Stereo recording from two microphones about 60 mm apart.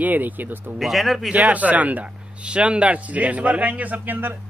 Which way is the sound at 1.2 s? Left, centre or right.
Centre.